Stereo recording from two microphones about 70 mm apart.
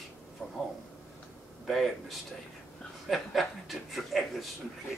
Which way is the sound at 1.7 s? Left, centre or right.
Centre.